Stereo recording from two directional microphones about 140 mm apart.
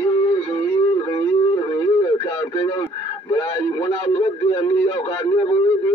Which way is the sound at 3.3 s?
35° left (ahead or behind).